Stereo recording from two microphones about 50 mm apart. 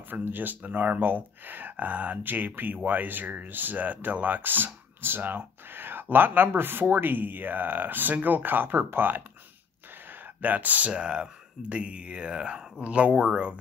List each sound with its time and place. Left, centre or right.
0.1 s speech: right
10.4 s speech: right
10.9 s speech: centre